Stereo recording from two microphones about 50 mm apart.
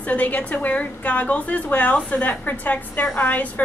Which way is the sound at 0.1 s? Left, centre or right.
Left.